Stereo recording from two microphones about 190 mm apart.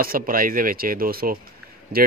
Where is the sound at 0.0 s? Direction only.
50° right (ahead or behind).